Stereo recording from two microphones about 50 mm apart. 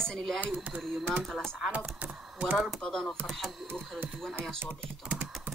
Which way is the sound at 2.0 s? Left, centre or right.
Right.